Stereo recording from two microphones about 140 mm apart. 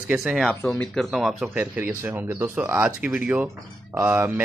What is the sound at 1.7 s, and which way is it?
Speech, 15° right (ahead or behind).